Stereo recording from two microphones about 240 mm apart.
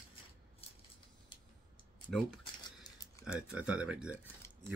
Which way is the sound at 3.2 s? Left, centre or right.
Centre.